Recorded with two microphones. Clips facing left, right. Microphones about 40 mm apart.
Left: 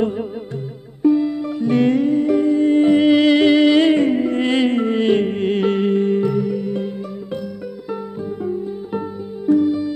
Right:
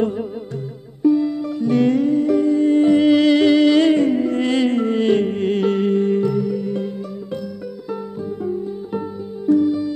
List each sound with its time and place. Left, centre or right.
0.0 s music: left
9.5 s music: left